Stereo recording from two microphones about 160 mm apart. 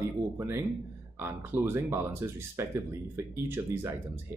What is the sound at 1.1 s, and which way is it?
Speech, 15° right (ahead or behind).